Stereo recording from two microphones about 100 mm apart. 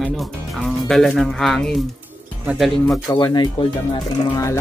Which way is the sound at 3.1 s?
45° left (ahead or behind).